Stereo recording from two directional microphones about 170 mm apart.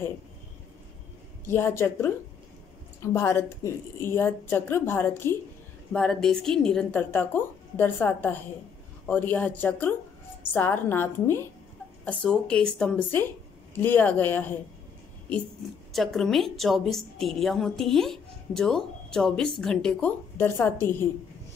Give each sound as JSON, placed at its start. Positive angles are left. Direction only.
{"t": 1.4, "sound": "a woman's voice", "side_deg": 15}
{"t": 5.9, "sound": "a woman's voice", "side_deg": 5}
{"t": 15.9, "sound": "a woman's voice", "side_deg": 0}